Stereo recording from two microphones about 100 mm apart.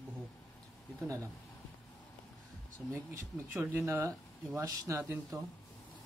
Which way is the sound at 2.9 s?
25° right (ahead or behind).